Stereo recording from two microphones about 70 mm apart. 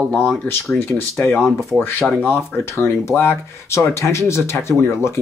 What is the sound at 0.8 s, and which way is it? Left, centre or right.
Speech, left.